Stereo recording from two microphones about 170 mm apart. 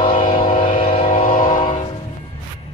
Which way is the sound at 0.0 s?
35° left (ahead or behind).